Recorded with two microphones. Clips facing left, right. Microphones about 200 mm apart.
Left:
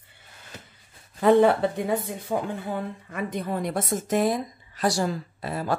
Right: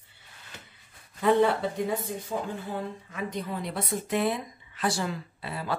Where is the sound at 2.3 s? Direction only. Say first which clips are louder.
Left 6 dB; 65° left (ahead or behind).